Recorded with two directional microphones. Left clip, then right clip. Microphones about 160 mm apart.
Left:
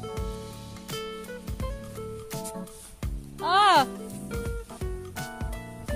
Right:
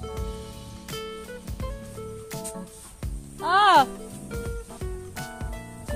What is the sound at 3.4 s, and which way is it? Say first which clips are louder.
Music: right 2 dB; 20° left (ahead or behind).